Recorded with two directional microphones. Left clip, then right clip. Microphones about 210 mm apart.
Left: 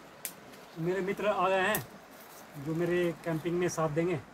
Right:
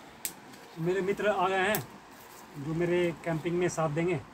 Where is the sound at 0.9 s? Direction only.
5° left (ahead or behind).